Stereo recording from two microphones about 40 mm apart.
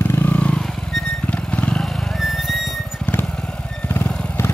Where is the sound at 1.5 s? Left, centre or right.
Left.